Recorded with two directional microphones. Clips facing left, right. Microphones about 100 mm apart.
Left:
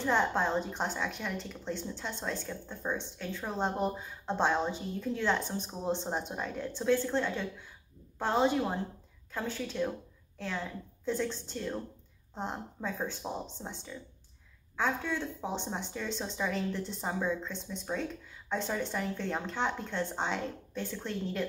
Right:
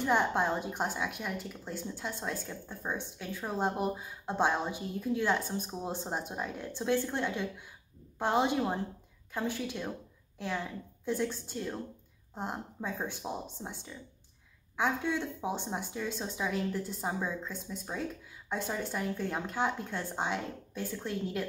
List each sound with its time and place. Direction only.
0.0 s a woman's voice: 15° right (ahead or behind)
11.1 s a woman's voice: 10° right (ahead or behind)